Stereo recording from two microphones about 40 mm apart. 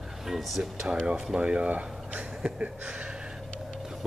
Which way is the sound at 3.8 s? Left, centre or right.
Centre.